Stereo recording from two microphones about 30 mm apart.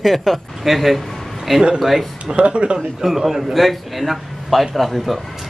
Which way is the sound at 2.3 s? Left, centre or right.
Right.